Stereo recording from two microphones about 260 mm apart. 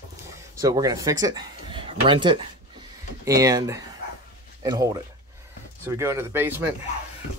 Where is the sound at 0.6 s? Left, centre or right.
Centre.